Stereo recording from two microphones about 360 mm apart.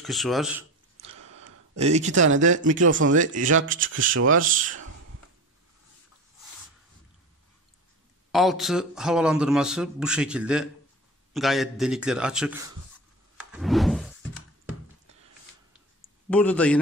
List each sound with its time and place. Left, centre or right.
0.0 s a man's voice: centre
1.0 s a sound: right
1.8 s speech: centre
2.1 s speech: right
2.4 s speech: right
3.9 s speech: right
4.3 s speech: right
8.3 s a man's voice: centre
13.4 s a sound: centre
16.0 s a sound: centre